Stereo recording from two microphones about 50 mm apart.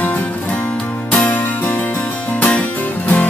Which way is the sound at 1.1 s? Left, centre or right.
Left.